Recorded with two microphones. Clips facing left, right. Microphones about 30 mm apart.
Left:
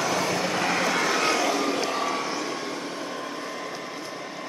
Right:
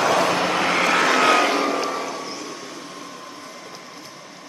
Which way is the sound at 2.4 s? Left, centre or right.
Left.